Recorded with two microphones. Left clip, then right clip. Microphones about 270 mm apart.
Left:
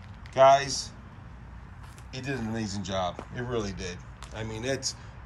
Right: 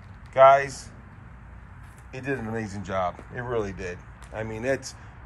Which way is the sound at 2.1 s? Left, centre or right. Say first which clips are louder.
Right 4 dB; centre.